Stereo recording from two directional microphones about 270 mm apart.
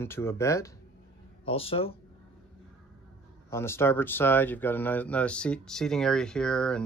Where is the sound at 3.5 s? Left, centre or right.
Centre.